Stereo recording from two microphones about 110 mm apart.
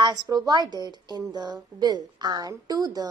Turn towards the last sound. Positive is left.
turn(degrees=-35)  # may be behind; listen again after turning